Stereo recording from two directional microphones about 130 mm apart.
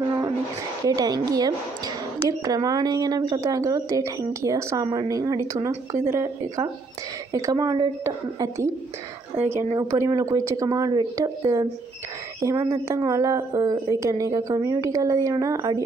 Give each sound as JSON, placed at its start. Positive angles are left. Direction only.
{"t": 0.8, "sound": "speech", "side_deg": -30}
{"t": 9.8, "sound": "speech", "side_deg": -25}